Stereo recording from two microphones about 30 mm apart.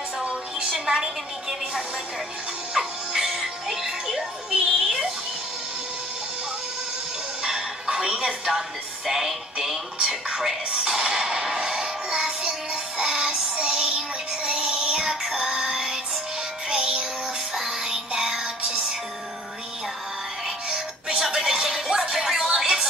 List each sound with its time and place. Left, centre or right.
0.7 s a woman's voice: right
2.7 s music: right
3.6 s music: centre
7.4 s music: right
8.5 s music: centre
16.6 s music: right
17.6 s music: right
18.4 s music: right
20.6 s music: right
21.2 s music: centre
22.5 s a sound: right